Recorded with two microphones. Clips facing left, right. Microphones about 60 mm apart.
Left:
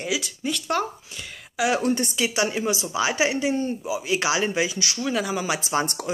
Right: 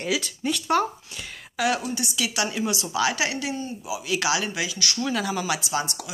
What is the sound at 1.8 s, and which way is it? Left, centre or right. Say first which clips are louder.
Speech: left 7 dB; left.